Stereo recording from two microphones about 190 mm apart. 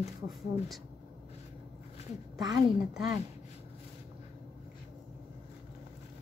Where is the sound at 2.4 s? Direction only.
20° right (ahead or behind).